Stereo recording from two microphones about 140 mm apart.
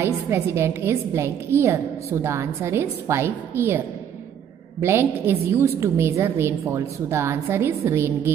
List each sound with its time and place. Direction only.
0.0 s a woman's voice: 20° right (ahead or behind)